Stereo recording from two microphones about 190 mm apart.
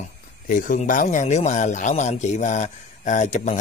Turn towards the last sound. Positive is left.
turn(degrees=40)  # may be behind; listen again after turning